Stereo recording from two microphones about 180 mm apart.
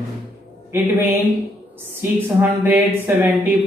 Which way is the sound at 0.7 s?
10° right (ahead or behind).